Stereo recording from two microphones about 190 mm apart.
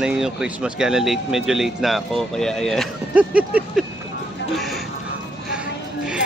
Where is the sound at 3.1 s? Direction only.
5° right (ahead or behind).